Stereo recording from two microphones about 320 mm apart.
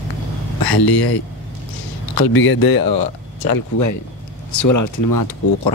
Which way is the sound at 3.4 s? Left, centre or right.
Left.